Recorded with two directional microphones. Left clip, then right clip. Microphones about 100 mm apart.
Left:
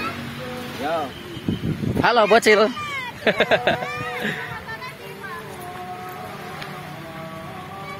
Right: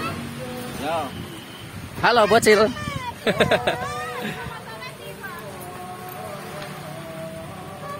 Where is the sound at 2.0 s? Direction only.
25° right (ahead or behind).